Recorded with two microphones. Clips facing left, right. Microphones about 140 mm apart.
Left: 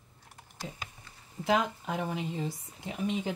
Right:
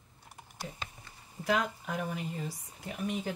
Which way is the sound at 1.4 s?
25° left (ahead or behind).